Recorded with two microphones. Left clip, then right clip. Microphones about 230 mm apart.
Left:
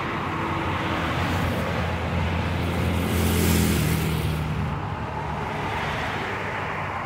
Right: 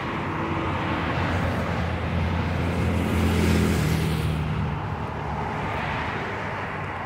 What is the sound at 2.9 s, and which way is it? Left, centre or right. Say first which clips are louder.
Vehicle: even; left.